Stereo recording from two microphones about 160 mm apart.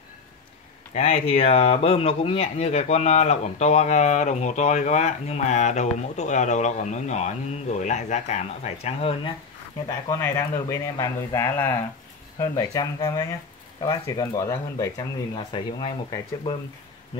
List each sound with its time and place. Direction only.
0.9 s speech: 40° left (ahead or behind)
9.8 s speech: 20° left (ahead or behind)
15.3 s speech: 30° left (ahead or behind)